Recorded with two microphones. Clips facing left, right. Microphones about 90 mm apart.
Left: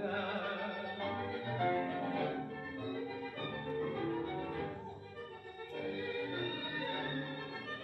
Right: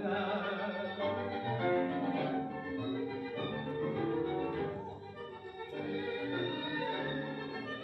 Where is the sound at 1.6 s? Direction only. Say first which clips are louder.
Right 2 dB; 10° right (ahead or behind).